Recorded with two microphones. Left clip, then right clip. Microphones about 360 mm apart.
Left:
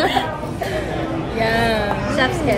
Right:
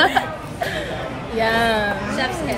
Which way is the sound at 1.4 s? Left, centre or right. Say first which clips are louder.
Even; centre.